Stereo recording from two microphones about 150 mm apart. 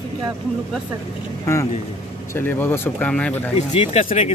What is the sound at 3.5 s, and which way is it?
Speech, 40° left (ahead or behind).